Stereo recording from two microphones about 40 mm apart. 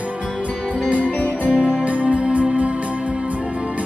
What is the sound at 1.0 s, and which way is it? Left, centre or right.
Music, left.